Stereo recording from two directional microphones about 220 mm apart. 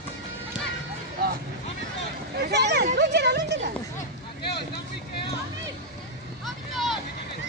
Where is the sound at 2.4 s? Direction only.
50° right (ahead or behind).